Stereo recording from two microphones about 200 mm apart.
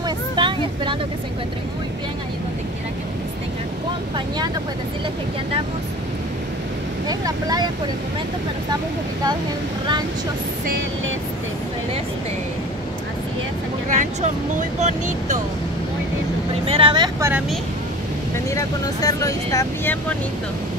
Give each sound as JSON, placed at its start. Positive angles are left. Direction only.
{"t": 0.0, "sound": "vehicle", "side_deg": -25}
{"t": 7.1, "sound": "speech", "side_deg": -20}
{"t": 13.8, "sound": "speech", "side_deg": -35}
{"t": 16.6, "sound": "speech", "side_deg": -25}
{"t": 18.5, "sound": "speech", "side_deg": 15}